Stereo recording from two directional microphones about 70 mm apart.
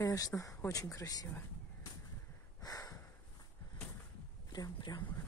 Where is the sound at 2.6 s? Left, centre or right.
Left.